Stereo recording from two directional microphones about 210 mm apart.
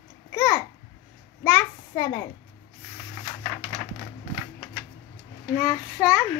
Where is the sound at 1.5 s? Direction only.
15° left (ahead or behind).